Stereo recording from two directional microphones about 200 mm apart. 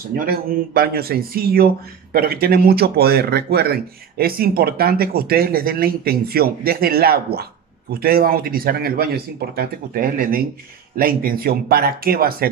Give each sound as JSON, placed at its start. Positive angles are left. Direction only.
{"t": 0.2, "sound": "speech", "side_deg": -45}